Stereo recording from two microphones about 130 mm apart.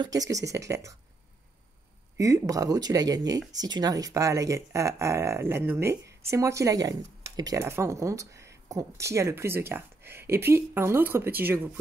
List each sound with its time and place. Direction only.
0.0 s speech: 30° right (ahead or behind)
2.1 s speech: 25° right (ahead or behind)